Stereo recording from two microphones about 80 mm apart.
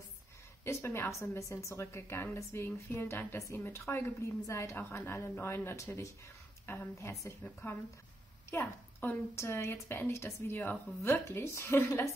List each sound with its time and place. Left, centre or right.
0.7 s speech: left
3.3 s speech: left
4.7 s a woman's voice: left
11.0 s speech: left
11.7 s speech: left